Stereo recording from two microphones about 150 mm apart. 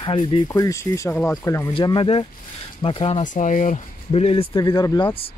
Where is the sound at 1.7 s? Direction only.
35° left (ahead or behind).